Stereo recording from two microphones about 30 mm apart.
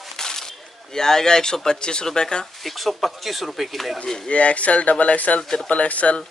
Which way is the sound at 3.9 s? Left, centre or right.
Centre.